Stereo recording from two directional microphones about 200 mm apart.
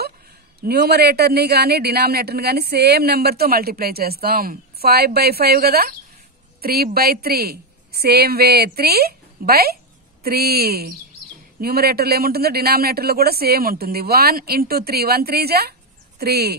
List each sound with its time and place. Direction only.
0.6 s a man's voice: 55° right (ahead or behind)